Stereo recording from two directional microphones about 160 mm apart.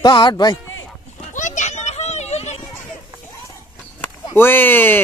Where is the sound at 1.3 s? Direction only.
50° left (ahead or behind).